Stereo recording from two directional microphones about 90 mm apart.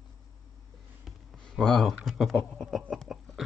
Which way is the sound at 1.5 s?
5° left (ahead or behind).